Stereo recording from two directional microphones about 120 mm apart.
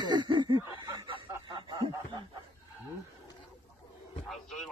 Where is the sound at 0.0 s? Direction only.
40° right (ahead or behind).